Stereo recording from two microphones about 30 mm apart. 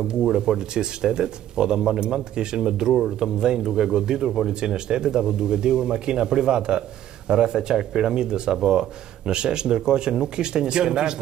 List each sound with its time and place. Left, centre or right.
0.1 s speech: right